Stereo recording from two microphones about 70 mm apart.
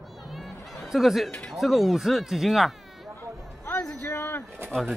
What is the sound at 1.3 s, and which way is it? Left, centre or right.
Speech, centre.